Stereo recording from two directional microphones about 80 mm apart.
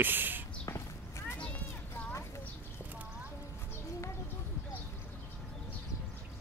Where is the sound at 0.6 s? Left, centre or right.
Left.